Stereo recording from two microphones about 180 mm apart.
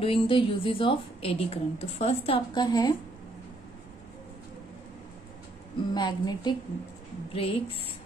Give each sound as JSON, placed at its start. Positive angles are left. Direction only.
{"t": 0.0, "sound": "a woman's voice", "side_deg": 30}
{"t": 5.9, "sound": "a woman's voice", "side_deg": 25}